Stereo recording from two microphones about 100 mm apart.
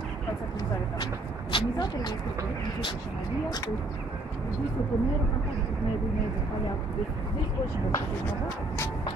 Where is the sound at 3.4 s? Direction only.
40° left (ahead or behind).